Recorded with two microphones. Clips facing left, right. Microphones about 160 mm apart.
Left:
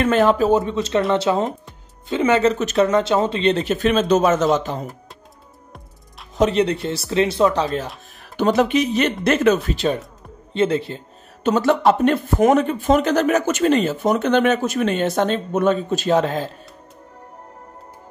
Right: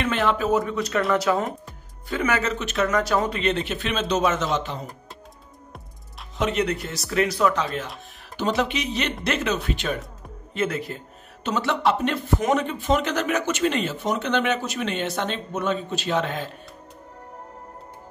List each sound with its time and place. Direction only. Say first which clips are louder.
0.0 s speech: left 7 dB; 40° left (ahead or behind)
2.9 s speech: left 5 dB; 25° left (ahead or behind); by 4.7 s 45° left (ahead or behind)
6.3 s speech: left 6 dB; 35° left (ahead or behind)
8.4 s speech: left 7 dB; 50° left (ahead or behind)
9.7 s speech: left 6 dB; 35° left (ahead or behind)
11.4 s speech: left 7 dB; 45° left (ahead or behind)